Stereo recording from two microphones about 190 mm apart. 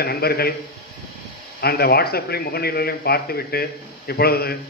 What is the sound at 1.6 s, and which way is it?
A man's voice, 55° left (ahead or behind).